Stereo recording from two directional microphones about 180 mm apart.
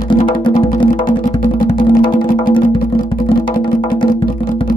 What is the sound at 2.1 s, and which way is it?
Music, 50° left (ahead or behind).